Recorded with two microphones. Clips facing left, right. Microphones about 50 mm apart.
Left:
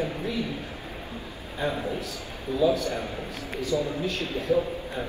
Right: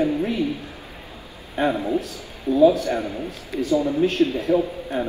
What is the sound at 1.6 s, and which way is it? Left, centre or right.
A man's voice, right.